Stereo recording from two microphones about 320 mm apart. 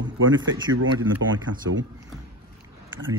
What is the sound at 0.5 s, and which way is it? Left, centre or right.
Speech, right.